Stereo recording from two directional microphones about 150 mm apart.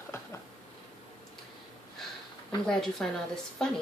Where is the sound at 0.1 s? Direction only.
20° left (ahead or behind).